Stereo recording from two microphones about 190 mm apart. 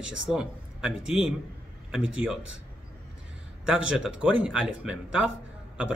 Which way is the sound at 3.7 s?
5° right (ahead or behind).